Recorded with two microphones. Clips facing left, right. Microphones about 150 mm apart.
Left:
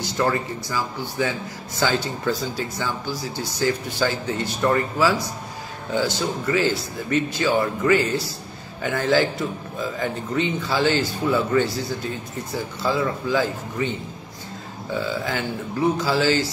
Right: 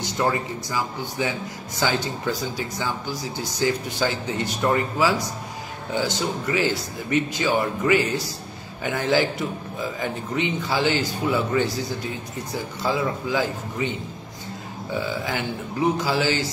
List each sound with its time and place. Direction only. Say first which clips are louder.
0.0 s speech: left 1 dB; 15° right (ahead or behind)
15.0 s speech: left 1 dB; 15° right (ahead or behind)